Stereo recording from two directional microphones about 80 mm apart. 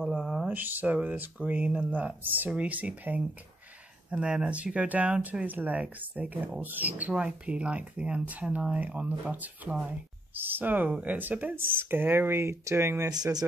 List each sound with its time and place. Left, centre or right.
0.0 s a sound: centre
0.5 s speech: right
13.1 s speech: right